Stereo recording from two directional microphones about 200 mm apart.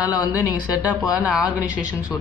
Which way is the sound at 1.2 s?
5° right (ahead or behind).